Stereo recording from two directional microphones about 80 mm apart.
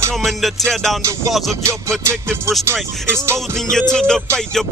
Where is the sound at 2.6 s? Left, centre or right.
Right.